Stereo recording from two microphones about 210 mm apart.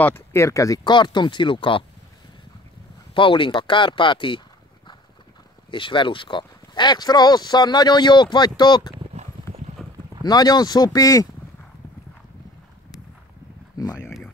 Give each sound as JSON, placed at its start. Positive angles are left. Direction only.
{"t": 0.0, "sound": "speech", "side_deg": 10}
{"t": 3.2, "sound": "speech", "side_deg": 25}
{"t": 5.7, "sound": "speech", "side_deg": 25}
{"t": 10.2, "sound": "speech", "side_deg": 20}
{"t": 13.7, "sound": "a sound", "side_deg": 15}